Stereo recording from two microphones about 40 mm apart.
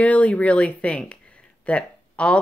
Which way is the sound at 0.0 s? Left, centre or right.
Left.